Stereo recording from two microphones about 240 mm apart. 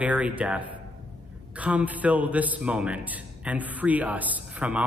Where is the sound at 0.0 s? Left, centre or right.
Centre.